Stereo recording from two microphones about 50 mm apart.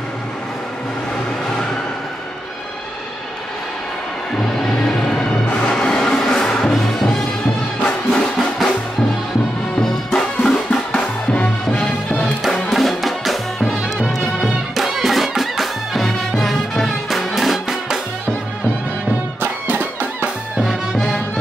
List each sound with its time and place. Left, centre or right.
5.7 s music: centre
7.8 s music: left
9.8 s music: centre
11.0 s music: left
12.7 s music: centre
13.9 s music: centre
14.8 s music: centre
19.4 s music: right
20.6 s music: centre